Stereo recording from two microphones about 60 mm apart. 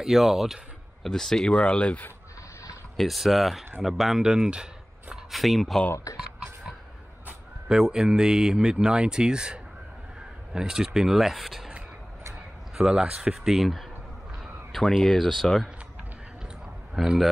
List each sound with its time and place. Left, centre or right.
0.0 s speech: centre
1.0 s speech: centre
3.0 s speech: centre
5.1 s speech: centre
6.1 s speech: left
7.6 s speech: centre
16.9 s speech: centre